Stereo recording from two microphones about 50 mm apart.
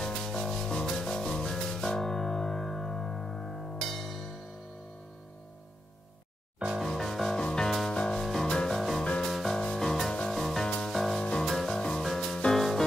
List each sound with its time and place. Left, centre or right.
0.0 s music: centre
6.8 s music: centre
7.3 s music: centre
8.2 s music: centre
8.5 s music: centre
8.7 s music: centre